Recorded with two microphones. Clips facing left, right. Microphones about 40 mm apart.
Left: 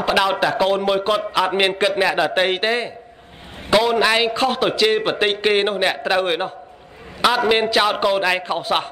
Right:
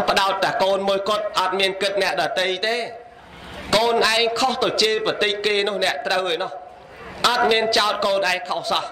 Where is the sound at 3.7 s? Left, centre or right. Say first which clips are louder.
Left 2 dB; centre.